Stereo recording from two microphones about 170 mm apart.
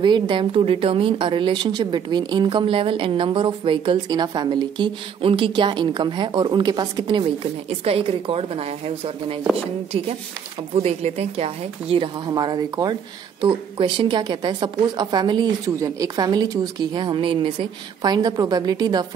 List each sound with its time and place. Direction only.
0.0 s a woman's voice: 25° right (ahead or behind)
10.8 s a woman's voice: 40° right (ahead or behind)
12.3 s a woman's voice: 25° right (ahead or behind)